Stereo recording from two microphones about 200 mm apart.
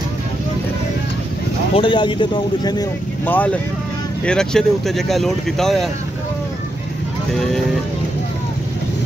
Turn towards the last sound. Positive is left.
turn(degrees=0)  # may be behind; listen again after turning